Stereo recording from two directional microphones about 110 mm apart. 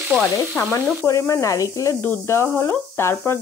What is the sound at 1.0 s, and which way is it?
Speech, 25° left (ahead or behind).